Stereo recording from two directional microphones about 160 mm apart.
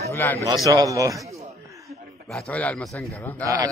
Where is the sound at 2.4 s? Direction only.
10° left (ahead or behind).